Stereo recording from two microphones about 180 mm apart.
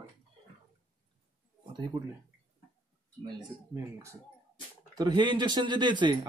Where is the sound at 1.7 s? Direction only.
25° right (ahead or behind).